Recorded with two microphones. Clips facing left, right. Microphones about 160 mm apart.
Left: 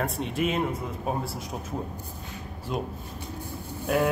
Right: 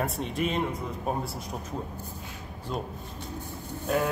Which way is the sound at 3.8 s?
10° left (ahead or behind).